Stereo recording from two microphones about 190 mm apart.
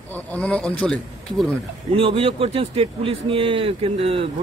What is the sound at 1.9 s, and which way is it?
A man's voice, 30° right (ahead or behind).